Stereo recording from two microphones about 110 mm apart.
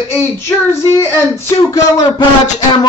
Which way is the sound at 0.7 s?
25° left (ahead or behind).